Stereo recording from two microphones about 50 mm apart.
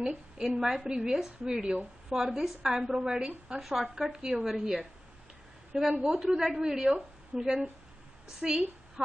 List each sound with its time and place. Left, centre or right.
0.0 s a sound: centre
0.6 s a woman's voice: centre
3.8 s a woman's voice: centre